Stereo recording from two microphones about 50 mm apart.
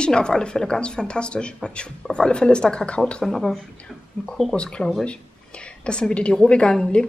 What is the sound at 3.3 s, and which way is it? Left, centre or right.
Speech, centre.